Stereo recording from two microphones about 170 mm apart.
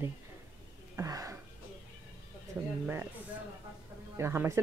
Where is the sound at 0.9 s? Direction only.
20° right (ahead or behind).